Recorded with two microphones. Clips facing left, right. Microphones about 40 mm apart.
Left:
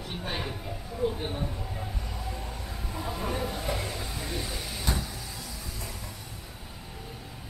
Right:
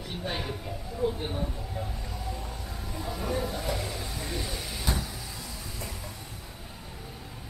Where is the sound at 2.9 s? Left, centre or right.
Centre.